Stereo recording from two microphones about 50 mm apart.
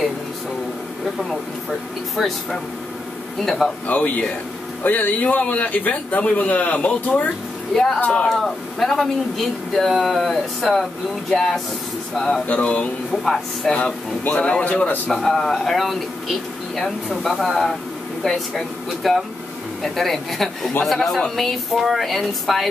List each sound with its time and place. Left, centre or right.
1.7 s speech: centre
3.8 s speech: left
7.7 s speech: centre
8.0 s a sound: left
8.3 s speech: centre
12.4 s a sound: left
13.1 s speech: centre
14.3 s a sound: left
14.6 s speech: left
15.0 s speech: centre